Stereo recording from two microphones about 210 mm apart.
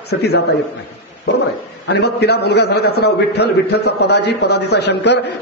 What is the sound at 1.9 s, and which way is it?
A man's voice, 55° left (ahead or behind).